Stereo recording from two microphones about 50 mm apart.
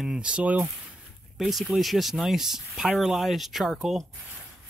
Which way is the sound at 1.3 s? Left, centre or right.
Centre.